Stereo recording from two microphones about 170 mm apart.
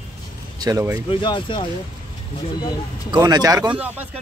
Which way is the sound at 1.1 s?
30° left (ahead or behind).